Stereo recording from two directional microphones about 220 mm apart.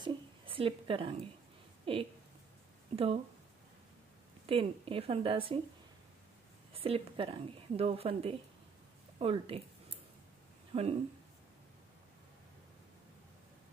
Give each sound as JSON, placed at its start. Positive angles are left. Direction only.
{"t": 0.0, "sound": "a sound", "side_deg": -25}
{"t": 1.9, "sound": "speech", "side_deg": -25}
{"t": 4.5, "sound": "speech", "side_deg": -25}
{"t": 6.7, "sound": "speech", "side_deg": -25}
{"t": 10.7, "sound": "speech", "side_deg": -25}